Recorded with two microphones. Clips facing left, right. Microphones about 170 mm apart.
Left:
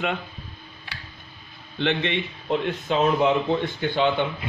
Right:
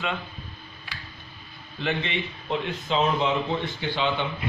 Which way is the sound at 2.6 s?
55° left (ahead or behind).